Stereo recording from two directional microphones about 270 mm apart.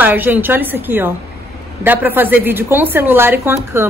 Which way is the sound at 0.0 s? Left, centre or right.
Centre.